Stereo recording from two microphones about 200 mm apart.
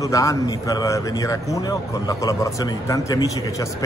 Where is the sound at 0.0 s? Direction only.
15° left (ahead or behind).